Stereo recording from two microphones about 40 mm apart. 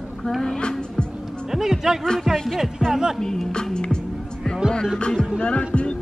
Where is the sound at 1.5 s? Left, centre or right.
Centre.